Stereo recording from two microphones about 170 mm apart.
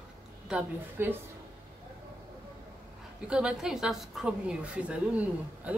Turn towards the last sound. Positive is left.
turn(degrees=-5)  # may be behind; listen again after turning